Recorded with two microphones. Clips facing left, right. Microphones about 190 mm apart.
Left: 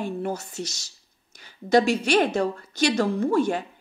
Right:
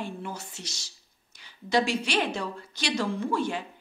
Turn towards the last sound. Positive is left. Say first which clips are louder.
# left 6 dB
turn(degrees=45)  # may be behind; listen again after turning